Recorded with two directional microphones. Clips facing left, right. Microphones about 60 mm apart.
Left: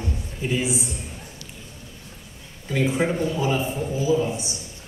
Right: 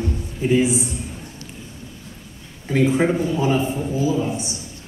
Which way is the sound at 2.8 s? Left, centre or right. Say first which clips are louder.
Right 4 dB; right.